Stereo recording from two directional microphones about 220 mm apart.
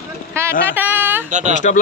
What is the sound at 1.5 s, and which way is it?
Speech, 35° left (ahead or behind).